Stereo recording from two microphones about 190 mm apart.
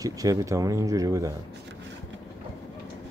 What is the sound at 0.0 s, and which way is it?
Speech, 20° right (ahead or behind).